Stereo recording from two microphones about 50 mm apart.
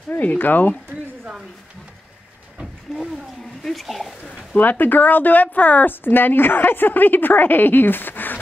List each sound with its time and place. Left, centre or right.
0.4 s a woman's voice: left
2.6 s vehicle: centre
3.6 s speech: centre
4.6 s a woman's voice: left
6.0 s a woman's voice: left